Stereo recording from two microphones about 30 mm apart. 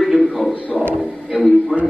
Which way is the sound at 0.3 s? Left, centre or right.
Centre.